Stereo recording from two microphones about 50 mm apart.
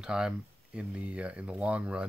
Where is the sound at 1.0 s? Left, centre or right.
Right.